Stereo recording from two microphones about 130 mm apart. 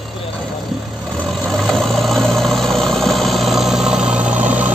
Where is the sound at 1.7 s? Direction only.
Centre (ahead or behind).